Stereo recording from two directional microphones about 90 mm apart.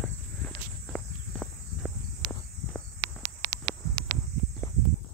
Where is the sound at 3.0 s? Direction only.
50° right (ahead or behind).